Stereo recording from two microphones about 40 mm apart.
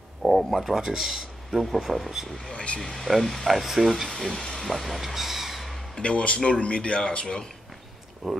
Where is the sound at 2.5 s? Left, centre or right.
Left.